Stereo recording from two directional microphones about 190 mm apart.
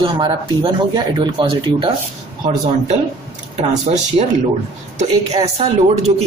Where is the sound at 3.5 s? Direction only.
35° right (ahead or behind).